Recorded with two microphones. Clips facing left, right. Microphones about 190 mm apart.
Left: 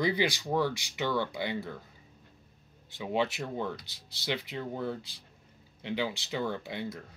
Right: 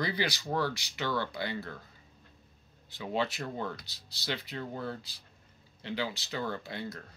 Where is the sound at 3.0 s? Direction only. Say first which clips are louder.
Left 2 dB; 15° left (ahead or behind).